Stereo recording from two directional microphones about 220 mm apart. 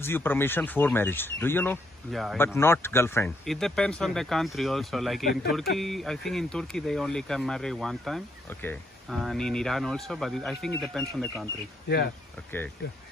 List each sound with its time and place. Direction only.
0.0 s speech: 10° left (ahead or behind)
5.3 s speech: 45° left (ahead or behind)
5.8 s speech: centre (ahead or behind)
12.5 s speech: 10° left (ahead or behind)